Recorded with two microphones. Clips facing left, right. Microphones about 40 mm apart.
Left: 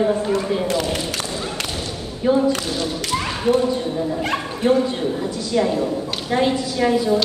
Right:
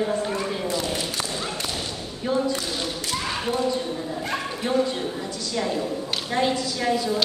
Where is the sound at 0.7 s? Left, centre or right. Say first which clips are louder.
Left 5 dB; left.